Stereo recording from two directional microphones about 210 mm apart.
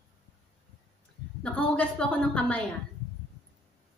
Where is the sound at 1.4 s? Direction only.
5° left (ahead or behind).